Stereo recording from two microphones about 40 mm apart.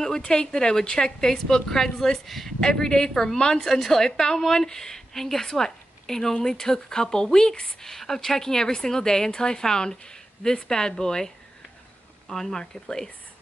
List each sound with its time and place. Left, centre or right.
0.2 s a woman's voice: left
2.2 s speech: centre
2.6 s a woman's voice: centre
7.8 s a woman's voice: centre